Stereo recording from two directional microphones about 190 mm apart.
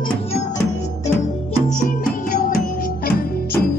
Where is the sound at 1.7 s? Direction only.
40° left (ahead or behind).